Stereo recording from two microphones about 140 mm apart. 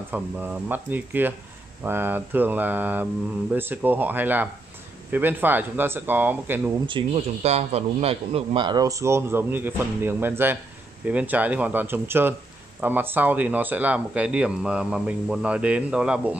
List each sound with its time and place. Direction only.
0.1 s speech: 15° right (ahead or behind)
6.9 s a man's voice: 40° right (ahead or behind); by 16.3 s 5° right (ahead or behind)